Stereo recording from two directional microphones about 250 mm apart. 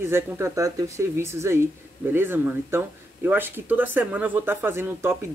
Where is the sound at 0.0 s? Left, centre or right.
Centre.